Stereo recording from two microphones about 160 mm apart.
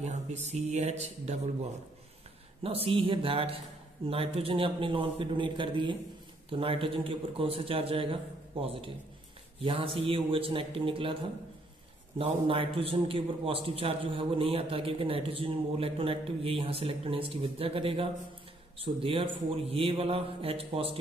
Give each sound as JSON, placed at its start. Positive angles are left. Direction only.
{"t": 0.0, "sound": "a man's voice", "side_deg": -45}
{"t": 12.2, "sound": "a man's voice", "side_deg": -35}